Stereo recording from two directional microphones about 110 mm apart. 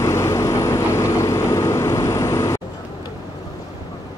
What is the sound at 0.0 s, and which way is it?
Vehicle, 25° left (ahead or behind).